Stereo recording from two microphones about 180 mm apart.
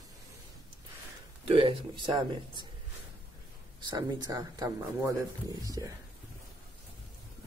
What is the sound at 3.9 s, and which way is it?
Speech, 25° right (ahead or behind).